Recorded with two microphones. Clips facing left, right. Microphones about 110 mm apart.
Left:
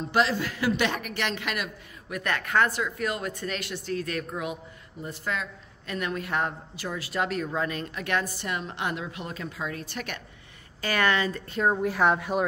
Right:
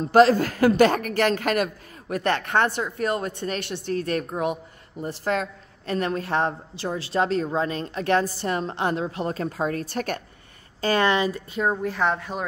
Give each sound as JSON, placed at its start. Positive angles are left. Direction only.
{"t": 0.1, "sound": "a woman's voice", "side_deg": -45}
{"t": 10.8, "sound": "speech", "side_deg": -30}
{"t": 11.5, "sound": "a woman's voice", "side_deg": 0}